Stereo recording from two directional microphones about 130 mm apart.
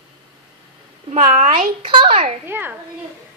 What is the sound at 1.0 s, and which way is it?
A child's voice, 55° right (ahead or behind).